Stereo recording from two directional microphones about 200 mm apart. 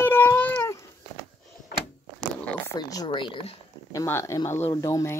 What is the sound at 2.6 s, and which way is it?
Speech, 20° left (ahead or behind).